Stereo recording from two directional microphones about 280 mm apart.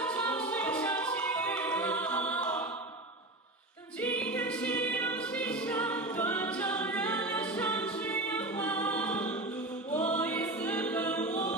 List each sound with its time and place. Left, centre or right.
0.0 s a capella: centre
4.0 s music: centre
11.2 s a capella: left